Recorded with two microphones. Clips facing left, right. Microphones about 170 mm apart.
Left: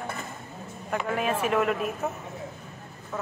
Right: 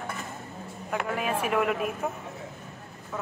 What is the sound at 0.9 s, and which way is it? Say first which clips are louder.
Speech: left 2 dB; 5° right (ahead or behind).